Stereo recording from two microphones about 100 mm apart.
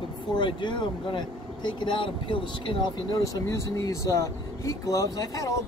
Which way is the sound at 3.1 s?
35° left (ahead or behind).